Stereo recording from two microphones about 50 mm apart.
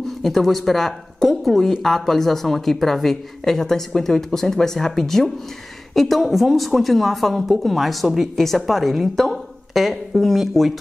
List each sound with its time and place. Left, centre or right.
0.2 s speech: centre